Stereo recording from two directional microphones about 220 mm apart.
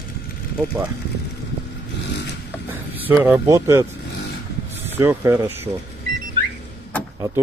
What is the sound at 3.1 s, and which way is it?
Speech, 10° right (ahead or behind).